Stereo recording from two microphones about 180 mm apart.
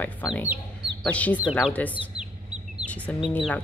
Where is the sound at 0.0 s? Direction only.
10° left (ahead or behind).